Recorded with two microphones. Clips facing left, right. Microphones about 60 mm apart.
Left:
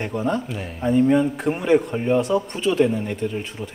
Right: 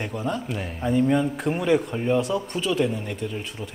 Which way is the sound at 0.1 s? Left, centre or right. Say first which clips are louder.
Left 6 dB; left.